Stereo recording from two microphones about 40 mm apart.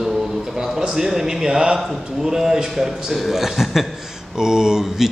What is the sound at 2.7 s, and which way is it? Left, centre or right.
A man's voice, centre.